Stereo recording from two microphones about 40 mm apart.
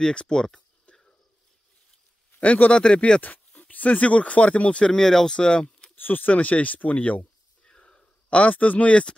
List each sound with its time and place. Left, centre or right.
0.0 s speech: left
2.4 s speech: left
2.8 s speech: left
3.5 s speech: left
4.9 s speech: centre
5.9 s speech: left
6.3 s speech: left
7.6 s sniff: left
8.3 s speech: left